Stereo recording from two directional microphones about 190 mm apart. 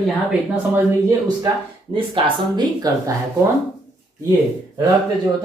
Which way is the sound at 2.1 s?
25° right (ahead or behind).